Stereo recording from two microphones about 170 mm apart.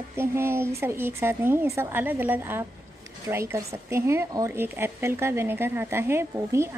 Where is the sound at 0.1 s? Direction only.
15° right (ahead or behind).